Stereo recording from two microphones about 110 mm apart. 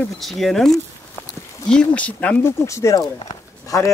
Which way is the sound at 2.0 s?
15° left (ahead or behind).